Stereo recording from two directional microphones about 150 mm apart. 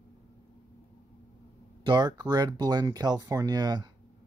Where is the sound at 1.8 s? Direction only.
30° right (ahead or behind).